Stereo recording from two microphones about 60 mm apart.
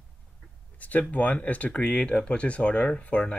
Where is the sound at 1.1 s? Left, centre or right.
Left.